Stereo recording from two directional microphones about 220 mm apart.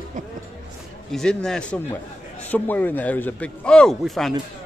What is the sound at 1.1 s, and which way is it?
A man's voice, 5° left (ahead or behind).